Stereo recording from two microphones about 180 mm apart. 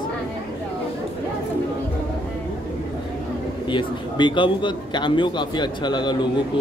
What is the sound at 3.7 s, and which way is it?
A man's voice, 25° left (ahead or behind).